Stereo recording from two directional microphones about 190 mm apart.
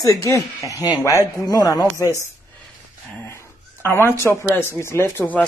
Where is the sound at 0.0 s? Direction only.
15° left (ahead or behind).